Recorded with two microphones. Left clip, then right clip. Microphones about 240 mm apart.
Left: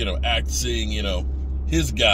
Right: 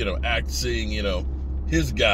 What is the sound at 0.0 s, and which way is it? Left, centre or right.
Speech, centre.